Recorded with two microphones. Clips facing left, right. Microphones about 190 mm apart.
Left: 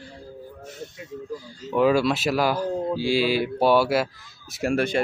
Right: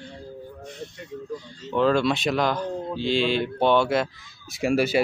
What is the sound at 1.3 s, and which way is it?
Speech, 5° left (ahead or behind).